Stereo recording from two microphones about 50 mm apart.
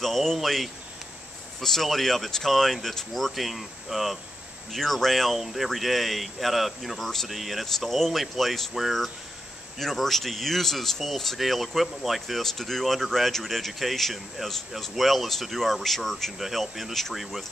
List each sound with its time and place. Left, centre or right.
0.0 s speech: centre